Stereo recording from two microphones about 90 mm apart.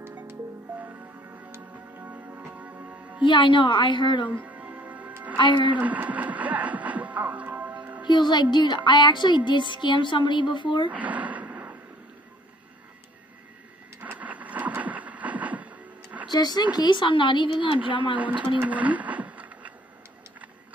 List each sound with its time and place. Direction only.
0.0 s music: 25° right (ahead or behind)
3.3 s speech: 65° left (ahead or behind)
4.3 s music: 20° right (ahead or behind)
5.4 s speech: 60° left (ahead or behind)
5.8 s music: 20° right (ahead or behind)
8.1 s speech: 55° left (ahead or behind)
10.9 s gasp: 15° right (ahead or behind)
14.0 s vehicle: 15° right (ahead or behind)
16.3 s speech: 50° left (ahead or behind); by 18.1 s 70° left (ahead or behind)
18.6 s a sound: 15° right (ahead or behind)